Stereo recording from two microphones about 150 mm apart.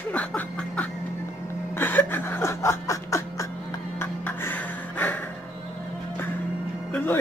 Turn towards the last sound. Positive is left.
turn(degrees=10)  # may be behind; listen again after turning